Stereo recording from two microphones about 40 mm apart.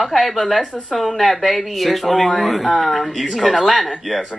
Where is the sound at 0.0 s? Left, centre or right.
Centre.